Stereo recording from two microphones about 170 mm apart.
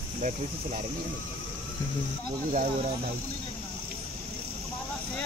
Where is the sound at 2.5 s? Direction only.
50° right (ahead or behind).